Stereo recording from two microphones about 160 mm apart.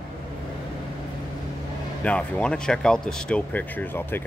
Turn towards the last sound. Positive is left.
turn(degrees=10)  # may be behind; listen again after turning